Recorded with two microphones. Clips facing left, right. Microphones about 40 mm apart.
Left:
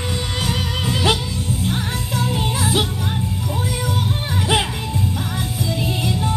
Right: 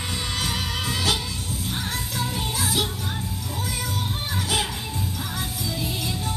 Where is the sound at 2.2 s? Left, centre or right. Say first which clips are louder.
Left 6 dB; left.